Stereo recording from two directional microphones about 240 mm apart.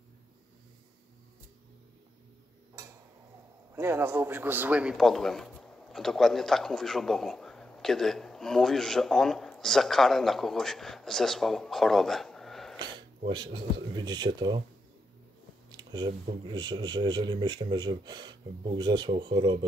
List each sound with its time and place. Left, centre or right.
3.7 s a man's voice: centre
12.7 s a sound: centre
13.3 s speech: centre
15.7 s speech: centre